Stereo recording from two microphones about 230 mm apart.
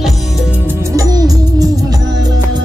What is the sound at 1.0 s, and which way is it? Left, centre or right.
Music, centre.